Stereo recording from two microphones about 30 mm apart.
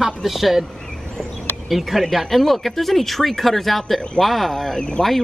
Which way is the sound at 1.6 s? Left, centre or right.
Centre.